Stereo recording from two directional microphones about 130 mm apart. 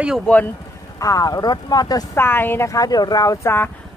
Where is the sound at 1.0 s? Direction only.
30° left (ahead or behind).